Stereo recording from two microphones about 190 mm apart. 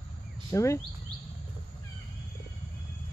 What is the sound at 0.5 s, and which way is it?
Speech, 15° left (ahead or behind).